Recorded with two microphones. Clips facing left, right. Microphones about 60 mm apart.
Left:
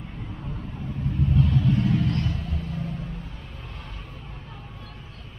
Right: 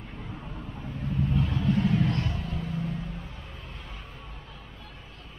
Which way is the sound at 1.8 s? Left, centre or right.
Right.